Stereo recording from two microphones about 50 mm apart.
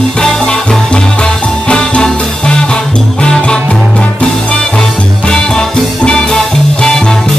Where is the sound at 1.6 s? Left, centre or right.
Centre.